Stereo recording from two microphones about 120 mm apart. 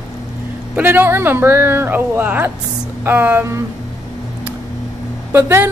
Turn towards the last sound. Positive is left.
turn(degrees=-20)  # may be behind; listen again after turning